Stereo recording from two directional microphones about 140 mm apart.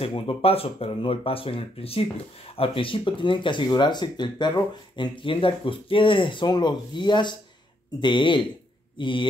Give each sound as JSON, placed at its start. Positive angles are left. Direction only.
{"t": 0.0, "sound": "speech", "side_deg": 40}